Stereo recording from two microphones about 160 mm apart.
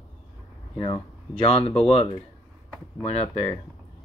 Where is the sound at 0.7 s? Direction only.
30° left (ahead or behind).